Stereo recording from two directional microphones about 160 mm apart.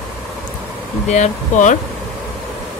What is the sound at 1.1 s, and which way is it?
Speech, 50° left (ahead or behind).